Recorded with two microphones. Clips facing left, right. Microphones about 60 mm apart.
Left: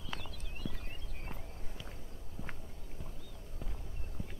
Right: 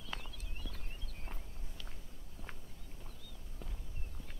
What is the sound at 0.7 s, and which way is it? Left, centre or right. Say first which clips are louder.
Walk: left 9 dB; left.